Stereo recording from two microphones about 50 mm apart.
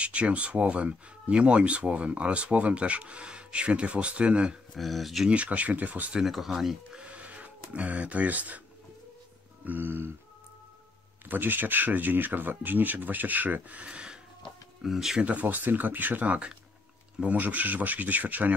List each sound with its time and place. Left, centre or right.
0.0 s speech: right
4.7 s speech: centre
5.3 s speech: right
6.2 s speech: centre
7.0 s a sound: right
9.7 s a sound: right
11.2 s speech: right
14.8 s speech: centre
15.1 s speech: right